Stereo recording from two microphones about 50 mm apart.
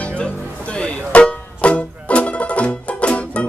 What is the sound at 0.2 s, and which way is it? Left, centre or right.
Music, centre.